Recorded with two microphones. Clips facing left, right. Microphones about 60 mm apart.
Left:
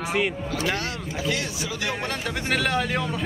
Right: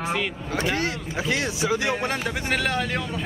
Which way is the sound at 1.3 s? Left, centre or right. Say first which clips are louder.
Right 7 dB; right.